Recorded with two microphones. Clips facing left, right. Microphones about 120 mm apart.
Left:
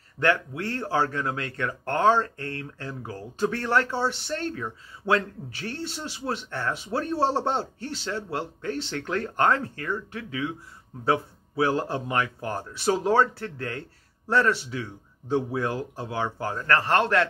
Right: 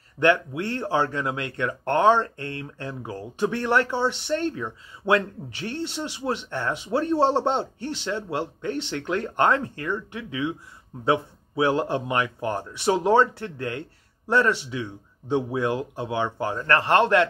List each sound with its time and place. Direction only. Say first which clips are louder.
0.2 s speech: right 4 dB; 20° right (ahead or behind)